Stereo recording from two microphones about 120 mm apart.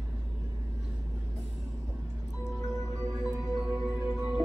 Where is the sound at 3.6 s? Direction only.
15° right (ahead or behind).